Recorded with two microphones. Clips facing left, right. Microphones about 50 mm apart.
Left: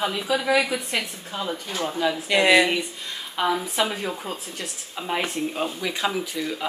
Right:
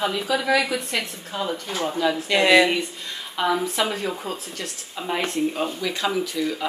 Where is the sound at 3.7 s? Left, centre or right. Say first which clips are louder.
Right 1 dB; centre.